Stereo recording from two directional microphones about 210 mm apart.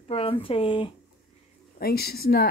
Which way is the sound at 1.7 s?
45° left (ahead or behind).